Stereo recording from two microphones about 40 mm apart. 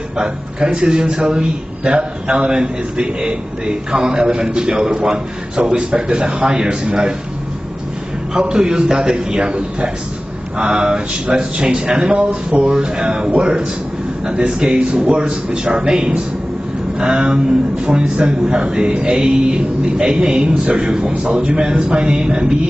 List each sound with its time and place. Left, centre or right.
0.2 s a man's voice: right
8.3 s a man's voice: centre